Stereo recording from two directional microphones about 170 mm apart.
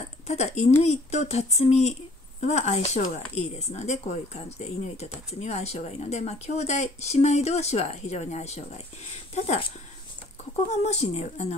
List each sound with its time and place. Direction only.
0.3 s speech: 40° left (ahead or behind)
10.7 s speech: 40° left (ahead or behind)